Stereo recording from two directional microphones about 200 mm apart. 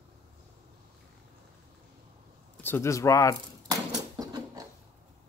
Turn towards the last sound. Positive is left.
turn(degrees=-15)  # may be behind; listen again after turning